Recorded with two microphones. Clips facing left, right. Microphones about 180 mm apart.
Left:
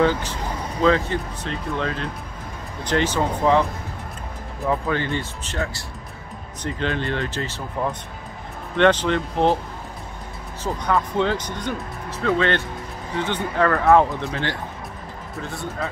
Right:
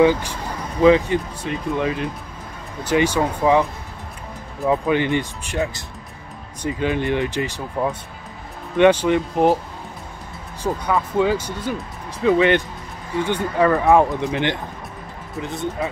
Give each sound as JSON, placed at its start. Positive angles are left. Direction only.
{"t": 0.0, "sound": "speech", "side_deg": -15}
{"t": 4.6, "sound": "speech", "side_deg": -15}
{"t": 10.6, "sound": "speech", "side_deg": -5}